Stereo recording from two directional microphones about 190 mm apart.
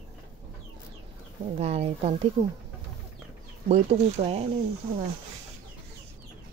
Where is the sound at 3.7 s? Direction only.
35° right (ahead or behind).